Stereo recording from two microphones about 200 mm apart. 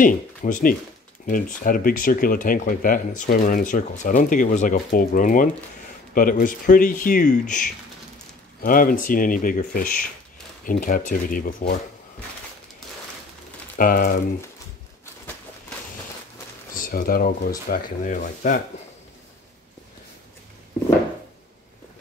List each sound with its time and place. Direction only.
0.0 s speech: 40° left (ahead or behind)
12.8 s a sound: centre (ahead or behind)
13.7 s speech: 45° left (ahead or behind)
16.7 s speech: 45° left (ahead or behind)